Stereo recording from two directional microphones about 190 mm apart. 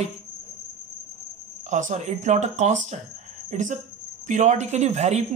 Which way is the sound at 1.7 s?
40° right (ahead or behind).